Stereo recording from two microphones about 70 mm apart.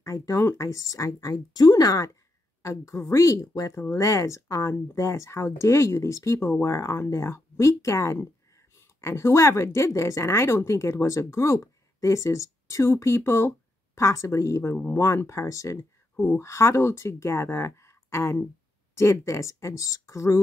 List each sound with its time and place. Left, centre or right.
0.0 s speech: left